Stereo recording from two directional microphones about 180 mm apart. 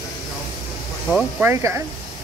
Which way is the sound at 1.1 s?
Centre (ahead or behind).